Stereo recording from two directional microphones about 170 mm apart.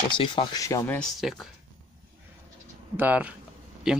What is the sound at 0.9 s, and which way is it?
Speech, centre (ahead or behind).